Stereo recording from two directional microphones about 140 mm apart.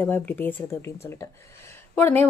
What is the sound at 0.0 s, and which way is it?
A woman's voice, 15° left (ahead or behind).